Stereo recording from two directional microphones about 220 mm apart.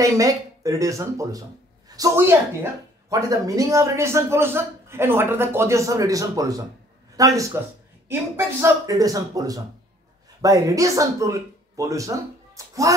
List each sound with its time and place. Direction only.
0.0 s a woman's voice: 15° right (ahead or behind)